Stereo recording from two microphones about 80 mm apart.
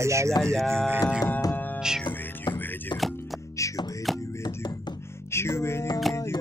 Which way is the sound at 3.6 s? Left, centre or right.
Left.